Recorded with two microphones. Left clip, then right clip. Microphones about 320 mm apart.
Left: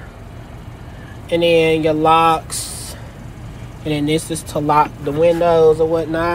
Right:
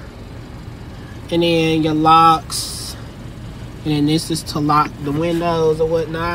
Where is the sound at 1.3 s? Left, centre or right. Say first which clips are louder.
Left 3 dB; centre.